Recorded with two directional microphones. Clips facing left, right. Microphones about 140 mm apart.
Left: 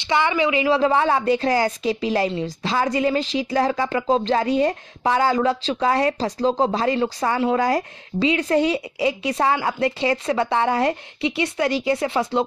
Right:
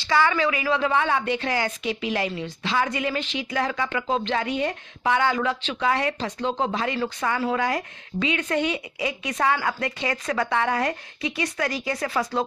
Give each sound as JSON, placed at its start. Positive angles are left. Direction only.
{"t": 0.0, "sound": "a woman's voice", "side_deg": 20}